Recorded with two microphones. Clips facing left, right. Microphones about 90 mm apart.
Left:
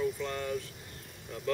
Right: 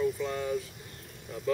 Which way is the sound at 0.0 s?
5° right (ahead or behind).